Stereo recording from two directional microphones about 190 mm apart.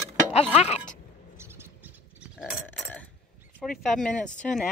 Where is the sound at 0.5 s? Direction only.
35° left (ahead or behind).